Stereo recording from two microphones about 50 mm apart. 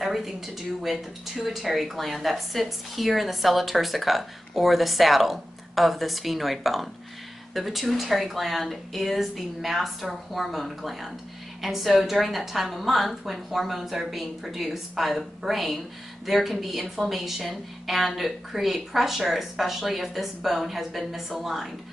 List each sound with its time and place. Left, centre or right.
0.0 s a woman's voice: centre